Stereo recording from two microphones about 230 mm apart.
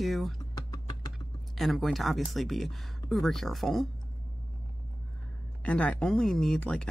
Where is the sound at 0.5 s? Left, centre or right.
Centre.